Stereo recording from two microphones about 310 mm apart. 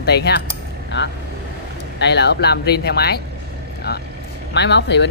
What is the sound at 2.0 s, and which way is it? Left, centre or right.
Speech, left.